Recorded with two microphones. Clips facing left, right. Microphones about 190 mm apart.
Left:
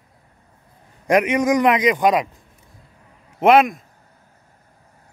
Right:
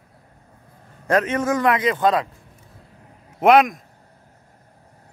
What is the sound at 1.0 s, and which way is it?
A man's voice, 15° left (ahead or behind).